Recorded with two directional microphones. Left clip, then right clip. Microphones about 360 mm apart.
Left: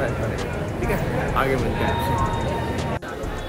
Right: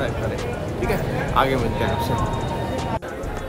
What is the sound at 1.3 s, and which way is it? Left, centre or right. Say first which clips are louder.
Speech: right 4 dB; centre.